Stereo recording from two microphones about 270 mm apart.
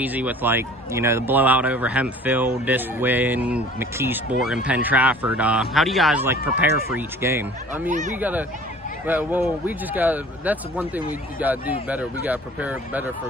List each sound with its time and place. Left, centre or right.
0.0 s a man's voice: centre
7.9 s speech: right
8.2 s a man's voice: centre